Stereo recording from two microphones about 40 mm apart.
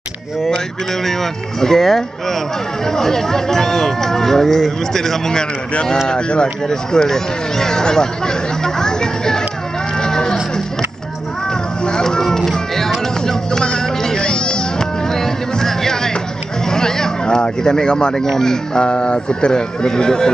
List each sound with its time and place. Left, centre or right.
1.0 s speech: centre
2.8 s speech: centre
9.9 s a sound: centre
11.8 s a sound: centre
18.3 s speech: centre
18.8 s speech: left